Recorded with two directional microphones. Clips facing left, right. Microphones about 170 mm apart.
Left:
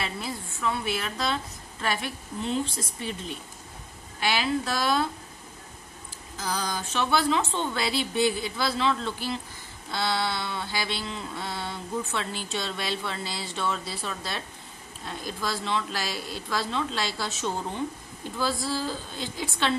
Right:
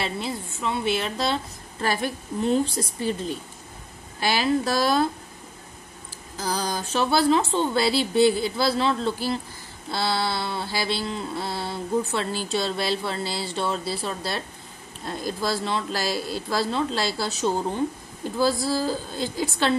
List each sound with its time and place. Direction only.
0.0 s mantra: 25° right (ahead or behind)
6.3 s mantra: 35° right (ahead or behind)